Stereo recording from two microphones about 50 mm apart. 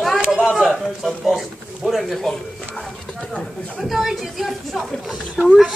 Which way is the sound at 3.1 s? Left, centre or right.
Centre.